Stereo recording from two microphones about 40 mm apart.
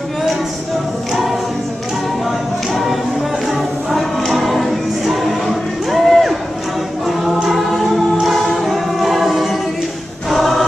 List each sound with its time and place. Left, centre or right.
2.7 s music: centre
3.9 s choir: centre
7.4 s choir: centre